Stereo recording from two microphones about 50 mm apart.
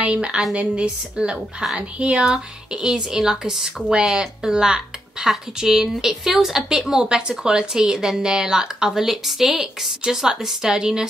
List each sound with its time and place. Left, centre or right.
0.0 s a woman's voice: right
2.1 s speech: centre